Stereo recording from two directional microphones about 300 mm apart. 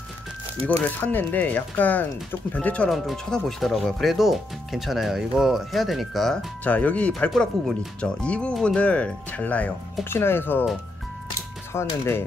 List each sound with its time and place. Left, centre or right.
0.7 s speech: centre
11.7 s speech: centre